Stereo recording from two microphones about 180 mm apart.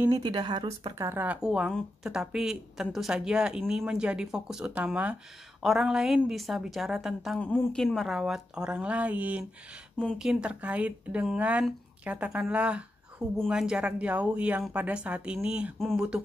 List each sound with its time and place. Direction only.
0.1 s speech: 25° right (ahead or behind)
0.9 s a woman's voice: 15° right (ahead or behind)